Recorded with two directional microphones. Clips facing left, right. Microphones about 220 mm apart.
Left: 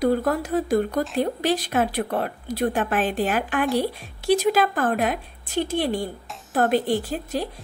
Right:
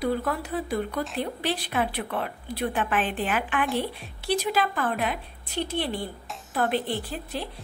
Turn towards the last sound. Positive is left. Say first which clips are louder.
# left 6 dB
turn(degrees=45)  # may be behind; listen again after turning